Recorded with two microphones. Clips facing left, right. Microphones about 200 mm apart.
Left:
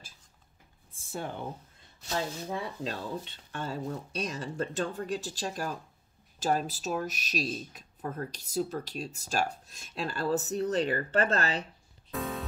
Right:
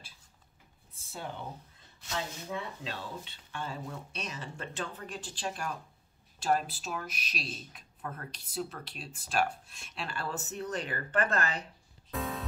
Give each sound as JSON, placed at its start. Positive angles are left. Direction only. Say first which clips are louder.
{"t": 0.9, "sound": "a sound", "louder": "left 4 dB", "side_deg": 50}
{"t": 2.0, "sound": "speech", "louder": "left 4 dB", "side_deg": 35}
{"t": 12.2, "sound": "music", "louder": "left 1 dB", "side_deg": 0}